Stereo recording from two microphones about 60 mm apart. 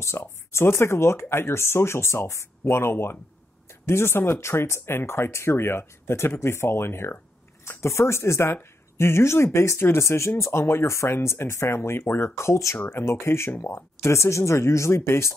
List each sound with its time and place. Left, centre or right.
0.2 s speech: left
12.0 s speech: left
12.4 s speech: left